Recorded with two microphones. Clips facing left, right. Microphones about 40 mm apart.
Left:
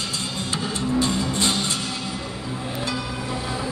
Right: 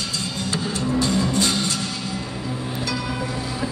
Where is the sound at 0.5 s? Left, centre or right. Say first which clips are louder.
Right 1 dB; left.